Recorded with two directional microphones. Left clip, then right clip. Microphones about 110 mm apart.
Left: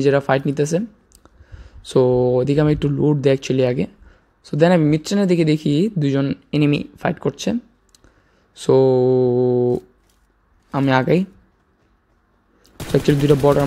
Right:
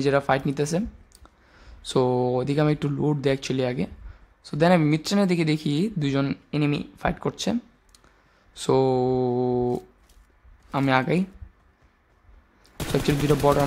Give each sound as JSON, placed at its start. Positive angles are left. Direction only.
{"t": 0.0, "sound": "speech", "side_deg": 15}
{"t": 6.5, "sound": "speech", "side_deg": 30}
{"t": 7.0, "sound": "speech", "side_deg": 10}
{"t": 8.5, "sound": "speech", "side_deg": 5}
{"t": 10.9, "sound": "speech", "side_deg": 25}
{"t": 12.7, "sound": "gunshot", "side_deg": 0}
{"t": 13.1, "sound": "speech", "side_deg": 0}